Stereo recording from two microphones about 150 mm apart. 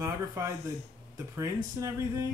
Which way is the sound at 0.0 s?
20° right (ahead or behind).